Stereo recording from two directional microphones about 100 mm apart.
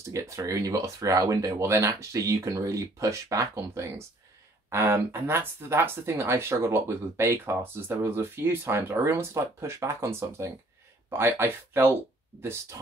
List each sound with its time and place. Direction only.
0.1 s speech: 35° right (ahead or behind)